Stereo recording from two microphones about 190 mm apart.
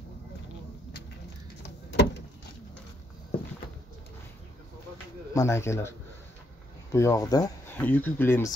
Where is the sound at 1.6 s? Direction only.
65° left (ahead or behind).